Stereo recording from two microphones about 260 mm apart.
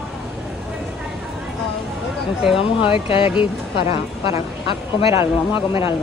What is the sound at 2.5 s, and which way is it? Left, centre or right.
Speech, left.